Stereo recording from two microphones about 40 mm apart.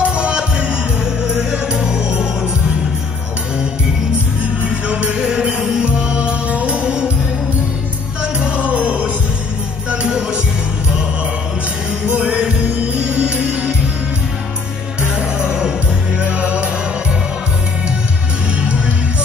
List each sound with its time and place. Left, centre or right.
0.0 s music: right
4.6 s music: right
6.5 s music: right
8.2 s music: right
12.1 s music: right
15.1 s music: right
16.2 s music: right